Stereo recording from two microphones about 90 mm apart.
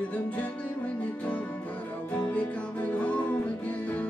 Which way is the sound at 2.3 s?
15° left (ahead or behind).